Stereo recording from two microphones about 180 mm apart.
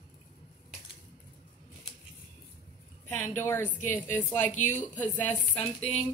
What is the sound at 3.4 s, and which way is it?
Speech, 10° left (ahead or behind).